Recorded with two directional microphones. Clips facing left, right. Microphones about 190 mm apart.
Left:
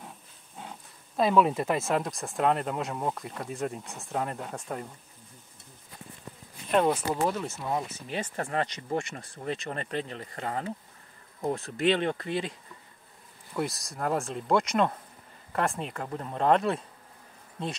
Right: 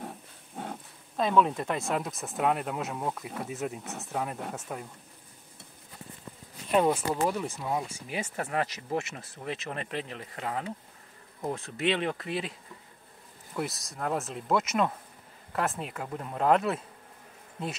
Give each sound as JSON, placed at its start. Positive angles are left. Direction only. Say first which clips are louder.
{"t": 0.0, "sound": "a sound", "louder": "right 6 dB", "side_deg": -50}
{"t": 1.1, "sound": "speech", "louder": "left 2 dB", "side_deg": 5}
{"t": 6.7, "sound": "speech", "louder": "even", "side_deg": -10}
{"t": 13.6, "sound": "speech", "louder": "left 2 dB", "side_deg": 0}